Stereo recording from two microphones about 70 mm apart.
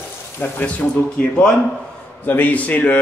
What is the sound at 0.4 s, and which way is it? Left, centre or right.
Speech, left.